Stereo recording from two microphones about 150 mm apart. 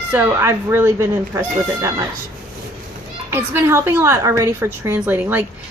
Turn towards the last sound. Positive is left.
turn(degrees=-15)  # may be behind; listen again after turning